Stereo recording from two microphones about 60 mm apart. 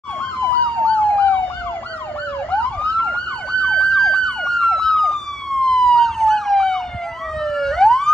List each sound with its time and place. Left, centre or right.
0.7 s emergency vehicle: left
2.6 s emergency vehicle: left